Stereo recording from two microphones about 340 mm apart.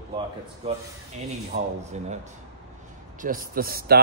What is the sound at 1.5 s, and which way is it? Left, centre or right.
Speech, centre.